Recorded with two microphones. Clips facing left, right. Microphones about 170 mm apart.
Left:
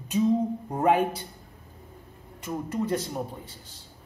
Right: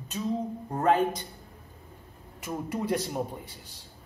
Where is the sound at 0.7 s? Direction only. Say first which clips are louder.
Left 1 dB; 10° left (ahead or behind).